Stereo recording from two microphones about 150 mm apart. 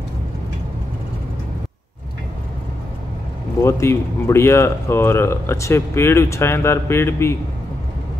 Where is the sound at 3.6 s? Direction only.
15° left (ahead or behind).